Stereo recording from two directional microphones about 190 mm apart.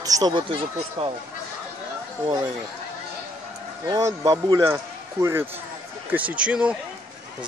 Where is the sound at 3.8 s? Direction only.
15° right (ahead or behind).